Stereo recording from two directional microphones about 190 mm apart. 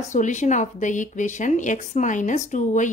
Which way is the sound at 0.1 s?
40° left (ahead or behind).